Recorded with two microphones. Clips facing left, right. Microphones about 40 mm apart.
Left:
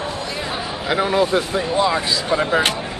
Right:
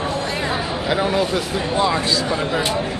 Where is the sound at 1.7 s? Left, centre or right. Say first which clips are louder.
Even; centre.